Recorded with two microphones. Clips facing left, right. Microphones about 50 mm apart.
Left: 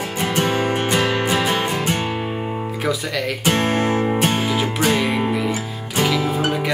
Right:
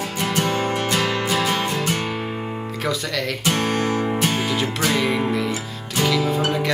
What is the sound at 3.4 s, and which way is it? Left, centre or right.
Music, left.